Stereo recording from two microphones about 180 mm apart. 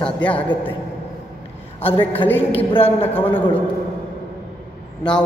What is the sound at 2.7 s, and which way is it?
Speech, 30° left (ahead or behind).